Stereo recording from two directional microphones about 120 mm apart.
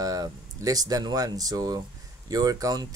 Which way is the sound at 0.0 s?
30° right (ahead or behind).